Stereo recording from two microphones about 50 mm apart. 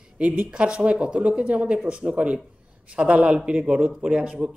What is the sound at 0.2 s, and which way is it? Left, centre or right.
Speech, right.